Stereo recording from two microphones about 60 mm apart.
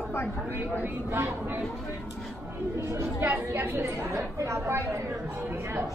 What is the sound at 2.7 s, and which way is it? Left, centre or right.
A woman's voice, right.